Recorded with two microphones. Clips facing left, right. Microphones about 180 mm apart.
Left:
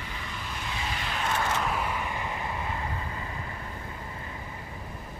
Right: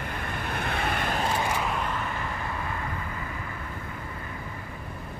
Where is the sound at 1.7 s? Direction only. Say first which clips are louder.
Even; 10° left (ahead or behind).